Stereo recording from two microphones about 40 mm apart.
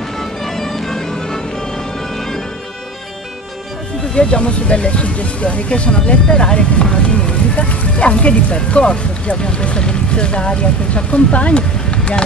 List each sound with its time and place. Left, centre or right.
0.2 s music: centre
4.1 s speech: left
6.2 s speech: centre
6.5 s speech: left
11.9 s vehicle: left